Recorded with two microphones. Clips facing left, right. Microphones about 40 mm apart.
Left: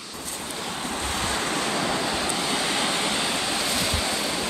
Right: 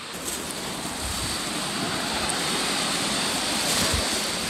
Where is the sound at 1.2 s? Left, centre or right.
Left.